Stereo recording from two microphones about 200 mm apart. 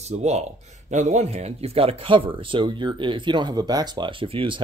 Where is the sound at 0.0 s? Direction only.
35° right (ahead or behind).